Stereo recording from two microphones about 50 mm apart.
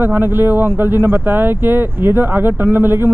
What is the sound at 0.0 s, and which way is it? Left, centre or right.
Speech, right.